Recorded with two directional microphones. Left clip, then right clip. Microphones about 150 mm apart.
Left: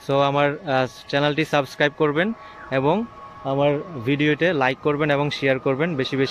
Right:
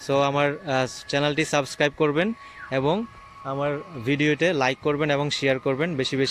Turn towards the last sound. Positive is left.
turn(degrees=0)  # may be behind; listen again after turning